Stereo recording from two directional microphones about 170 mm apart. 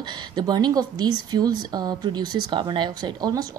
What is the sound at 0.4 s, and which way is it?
Speech, 25° right (ahead or behind).